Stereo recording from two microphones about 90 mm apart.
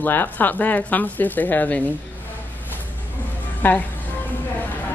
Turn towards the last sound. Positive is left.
turn(degrees=20)  # may be behind; listen again after turning